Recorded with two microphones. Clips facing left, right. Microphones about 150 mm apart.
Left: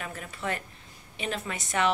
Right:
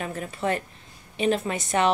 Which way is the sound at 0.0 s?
30° right (ahead or behind).